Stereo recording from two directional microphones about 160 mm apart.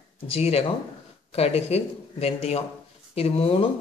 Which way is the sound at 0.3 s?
40° left (ahead or behind).